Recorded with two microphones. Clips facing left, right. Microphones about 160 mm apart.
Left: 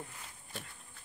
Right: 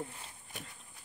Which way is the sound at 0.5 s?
20° right (ahead or behind).